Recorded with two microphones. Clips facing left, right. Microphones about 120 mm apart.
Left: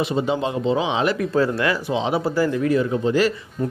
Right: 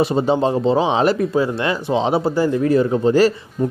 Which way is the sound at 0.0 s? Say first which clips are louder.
Right 5 dB; 35° right (ahead or behind).